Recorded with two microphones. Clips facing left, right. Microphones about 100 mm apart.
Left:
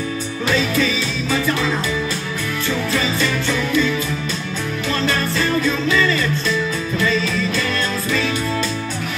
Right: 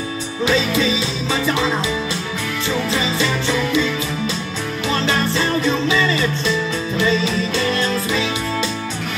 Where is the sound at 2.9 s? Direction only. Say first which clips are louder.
Left 1 dB; 20° right (ahead or behind).